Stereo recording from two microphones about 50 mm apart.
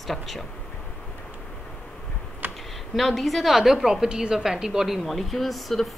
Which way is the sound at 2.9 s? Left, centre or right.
Centre.